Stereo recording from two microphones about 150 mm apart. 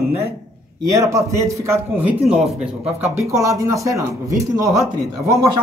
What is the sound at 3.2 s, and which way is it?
Speech, 20° right (ahead or behind).